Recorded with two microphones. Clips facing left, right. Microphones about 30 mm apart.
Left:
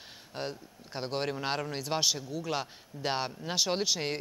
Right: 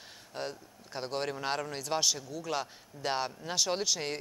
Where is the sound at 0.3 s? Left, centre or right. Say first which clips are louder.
Left 1 dB; centre.